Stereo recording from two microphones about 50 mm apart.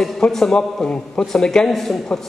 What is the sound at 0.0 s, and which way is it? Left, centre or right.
A man's voice, centre.